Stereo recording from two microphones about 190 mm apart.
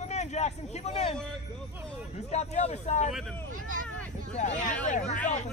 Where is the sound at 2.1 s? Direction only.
35° left (ahead or behind).